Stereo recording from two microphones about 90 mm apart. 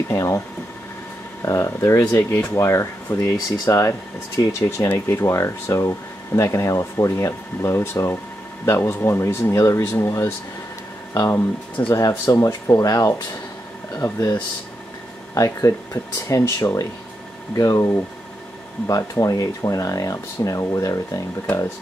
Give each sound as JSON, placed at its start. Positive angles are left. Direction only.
{"t": 0.1, "sound": "speech", "side_deg": 35}
{"t": 1.4, "sound": "speech", "side_deg": 35}
{"t": 3.3, "sound": "speech", "side_deg": 50}
{"t": 4.5, "sound": "speech", "side_deg": 35}
{"t": 11.8, "sound": "speech", "side_deg": 20}
{"t": 12.1, "sound": "speech", "side_deg": 35}
{"t": 15.3, "sound": "speech", "side_deg": 35}